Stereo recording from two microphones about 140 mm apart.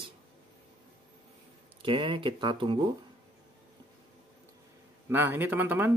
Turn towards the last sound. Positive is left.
turn(degrees=-15)  # may be behind; listen again after turning